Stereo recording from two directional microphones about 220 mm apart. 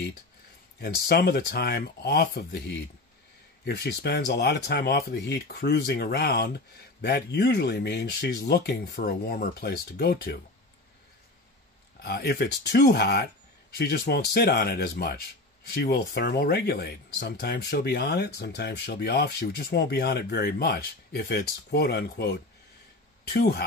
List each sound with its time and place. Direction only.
0.7 s speech: 45° left (ahead or behind)
12.0 s speech: 45° left (ahead or behind)